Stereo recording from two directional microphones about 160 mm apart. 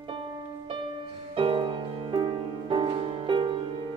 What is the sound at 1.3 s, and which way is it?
Music, 35° right (ahead or behind).